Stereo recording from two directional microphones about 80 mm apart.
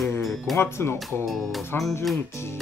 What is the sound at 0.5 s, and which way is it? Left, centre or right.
Speech, left.